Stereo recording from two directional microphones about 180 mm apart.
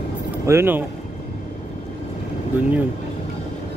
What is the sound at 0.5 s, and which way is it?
Speech, 10° right (ahead or behind).